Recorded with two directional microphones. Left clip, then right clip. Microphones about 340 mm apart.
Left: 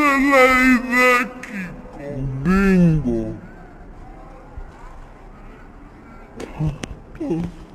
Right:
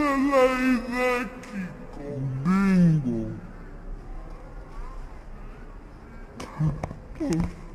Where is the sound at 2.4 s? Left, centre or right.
Centre.